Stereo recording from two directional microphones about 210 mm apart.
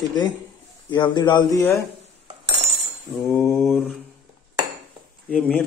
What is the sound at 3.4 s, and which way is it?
Speech, 10° left (ahead or behind).